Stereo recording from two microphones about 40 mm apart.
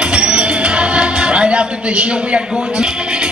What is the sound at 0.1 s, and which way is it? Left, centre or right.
Music, right.